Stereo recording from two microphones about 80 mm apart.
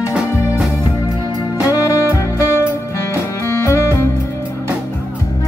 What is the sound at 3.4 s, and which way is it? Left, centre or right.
Music, left.